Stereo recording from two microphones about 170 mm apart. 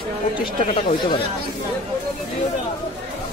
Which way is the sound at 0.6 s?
45° left (ahead or behind).